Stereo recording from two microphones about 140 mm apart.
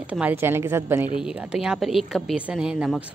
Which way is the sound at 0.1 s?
10° right (ahead or behind).